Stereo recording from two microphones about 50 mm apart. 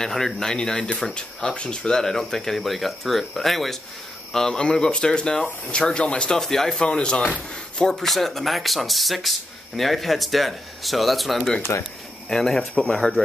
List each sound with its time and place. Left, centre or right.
0.0 s speech: centre
6.3 s speech: centre
6.8 s speech: centre
11.7 s speech: left
12.3 s speech: centre